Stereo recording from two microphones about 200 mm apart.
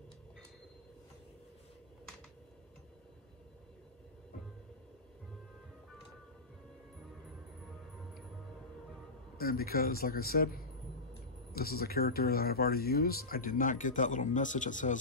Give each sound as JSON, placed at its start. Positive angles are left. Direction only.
{"t": 9.4, "sound": "speech", "side_deg": 50}